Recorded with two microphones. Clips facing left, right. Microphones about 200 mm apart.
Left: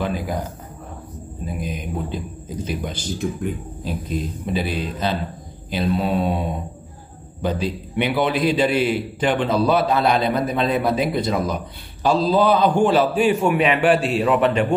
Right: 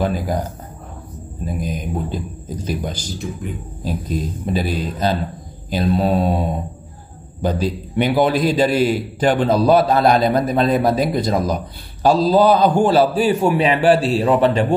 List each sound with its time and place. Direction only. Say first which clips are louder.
0.0 s a man's voice: right 4 dB; 40° right (ahead or behind)
1.4 s a man's voice: right 4 dB; 40° right (ahead or behind)
7.4 s a man's voice: right 3 dB; 40° right (ahead or behind)